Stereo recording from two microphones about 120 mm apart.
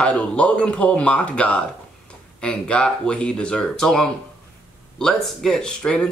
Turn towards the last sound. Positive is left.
turn(degrees=5)  # may be behind; listen again after turning